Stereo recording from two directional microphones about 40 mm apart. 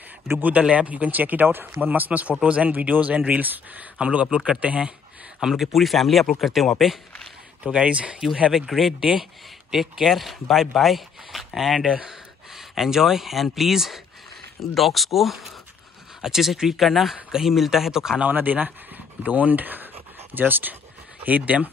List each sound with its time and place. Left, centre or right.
0.6 s speech: right
5.4 s speech: centre
7.6 s speech: right
8.6 s speech: centre
18.3 s speech: right
21.2 s speech: right